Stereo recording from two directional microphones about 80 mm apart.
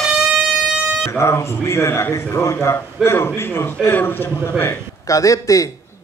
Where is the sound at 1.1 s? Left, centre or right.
Left.